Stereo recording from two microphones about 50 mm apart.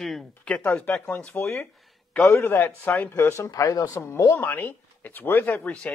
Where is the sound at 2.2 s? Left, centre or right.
Left.